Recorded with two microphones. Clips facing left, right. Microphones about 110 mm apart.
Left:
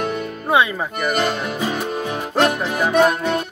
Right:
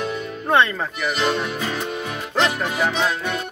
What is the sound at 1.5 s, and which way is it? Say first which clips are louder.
Music: left 3 dB; 15° left (ahead or behind).